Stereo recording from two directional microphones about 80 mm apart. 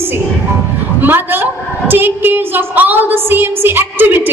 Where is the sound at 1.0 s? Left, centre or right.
Right.